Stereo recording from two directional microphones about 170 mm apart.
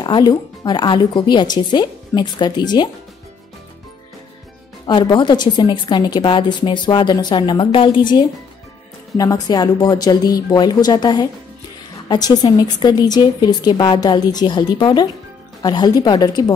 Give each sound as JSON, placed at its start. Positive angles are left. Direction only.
{"t": 0.0, "sound": "a woman's voice", "side_deg": 25}
{"t": 4.8, "sound": "a woman's voice", "side_deg": 25}